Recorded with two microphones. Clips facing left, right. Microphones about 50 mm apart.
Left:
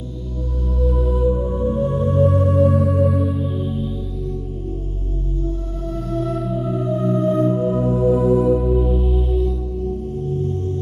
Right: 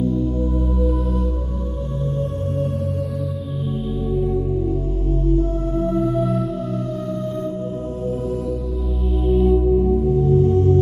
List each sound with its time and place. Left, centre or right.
0.7 s music: centre
2.1 s music: left
6.1 s music: centre
6.7 s music: left
8.0 s music: left
9.1 s music: centre
10.3 s music: right